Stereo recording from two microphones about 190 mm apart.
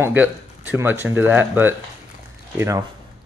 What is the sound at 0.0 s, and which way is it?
Speech, 10° right (ahead or behind).